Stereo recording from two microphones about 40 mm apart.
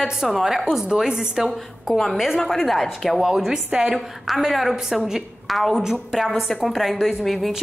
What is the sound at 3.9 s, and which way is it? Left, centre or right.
A woman's voice, centre.